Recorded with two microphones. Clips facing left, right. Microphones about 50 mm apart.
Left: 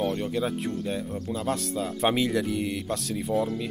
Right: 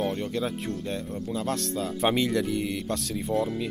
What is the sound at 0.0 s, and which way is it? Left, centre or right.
Speech, centre.